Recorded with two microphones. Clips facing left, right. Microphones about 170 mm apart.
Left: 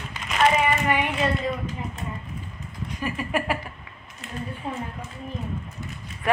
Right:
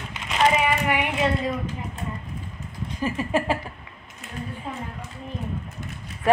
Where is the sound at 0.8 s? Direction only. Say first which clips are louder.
Left 1 dB; 15° right (ahead or behind).